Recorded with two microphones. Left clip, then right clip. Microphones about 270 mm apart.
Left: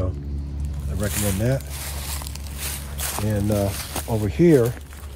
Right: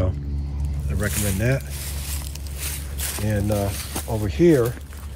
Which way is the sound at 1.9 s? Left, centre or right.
Left.